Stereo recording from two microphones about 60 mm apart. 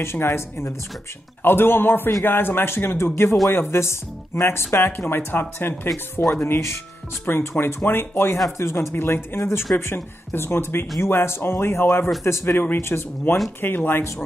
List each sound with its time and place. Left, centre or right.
0.0 s speech: left